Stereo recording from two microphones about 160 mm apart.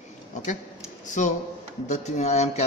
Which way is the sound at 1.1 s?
50° left (ahead or behind).